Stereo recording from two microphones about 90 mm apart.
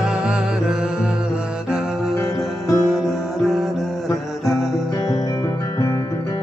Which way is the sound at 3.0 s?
Centre (ahead or behind).